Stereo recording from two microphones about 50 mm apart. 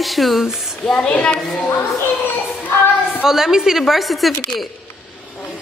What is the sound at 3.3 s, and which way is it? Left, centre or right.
A woman's voice, centre.